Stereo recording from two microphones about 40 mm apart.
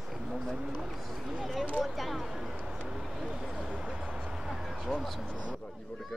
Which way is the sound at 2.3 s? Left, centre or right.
Centre.